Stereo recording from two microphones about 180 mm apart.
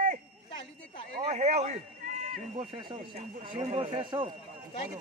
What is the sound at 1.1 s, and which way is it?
Run, 35° right (ahead or behind).